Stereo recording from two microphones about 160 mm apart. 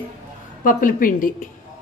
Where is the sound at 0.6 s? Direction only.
55° left (ahead or behind).